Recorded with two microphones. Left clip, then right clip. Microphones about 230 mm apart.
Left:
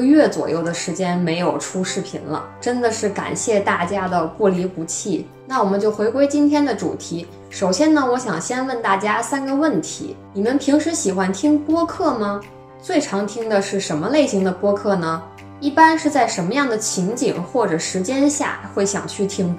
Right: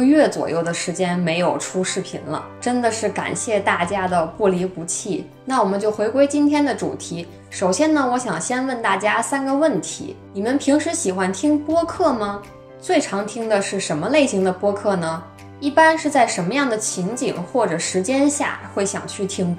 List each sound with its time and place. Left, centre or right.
0.0 s speech: right